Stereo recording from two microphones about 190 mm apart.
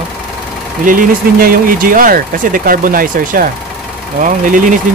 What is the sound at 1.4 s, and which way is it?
Speech, 50° right (ahead or behind).